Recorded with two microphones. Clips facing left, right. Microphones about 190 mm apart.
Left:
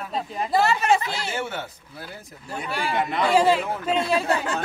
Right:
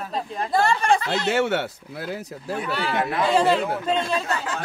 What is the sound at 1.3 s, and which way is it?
Speech, 75° right (ahead or behind).